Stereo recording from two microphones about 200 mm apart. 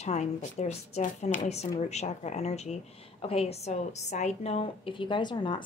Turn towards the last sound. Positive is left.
turn(degrees=20)  # may be behind; listen again after turning